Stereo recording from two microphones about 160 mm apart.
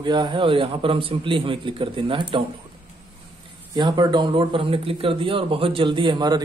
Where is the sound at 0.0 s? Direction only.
30° right (ahead or behind).